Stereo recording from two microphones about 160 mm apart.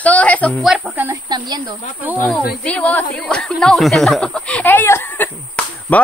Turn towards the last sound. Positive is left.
turn(degrees=10)  # may be behind; listen again after turning